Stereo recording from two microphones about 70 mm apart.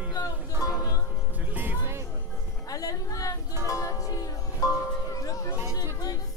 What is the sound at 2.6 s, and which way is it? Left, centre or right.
Music, left.